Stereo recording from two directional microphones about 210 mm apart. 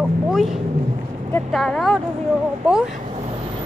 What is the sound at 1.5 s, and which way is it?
Speech, centre (ahead or behind).